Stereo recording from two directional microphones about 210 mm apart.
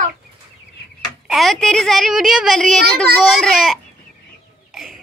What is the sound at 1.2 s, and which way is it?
A woman's voice, centre (ahead or behind).